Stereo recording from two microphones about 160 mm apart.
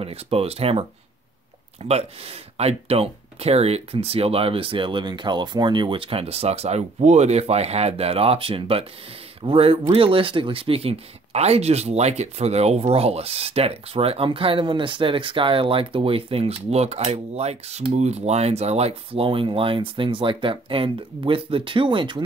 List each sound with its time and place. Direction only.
0.0 s speech: 40° right (ahead or behind)